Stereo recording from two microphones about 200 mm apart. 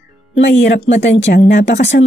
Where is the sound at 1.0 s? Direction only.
35° left (ahead or behind).